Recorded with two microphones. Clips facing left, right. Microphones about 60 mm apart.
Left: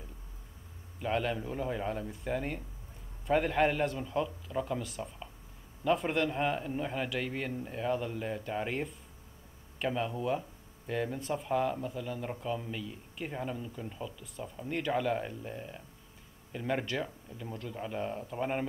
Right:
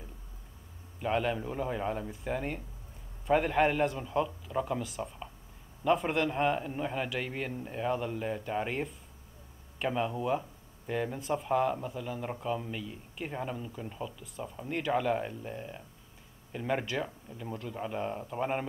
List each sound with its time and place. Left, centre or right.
1.0 s speech: centre